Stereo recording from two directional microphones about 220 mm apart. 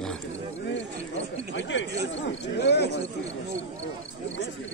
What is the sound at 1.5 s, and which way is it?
Chatter, 55° left (ahead or behind).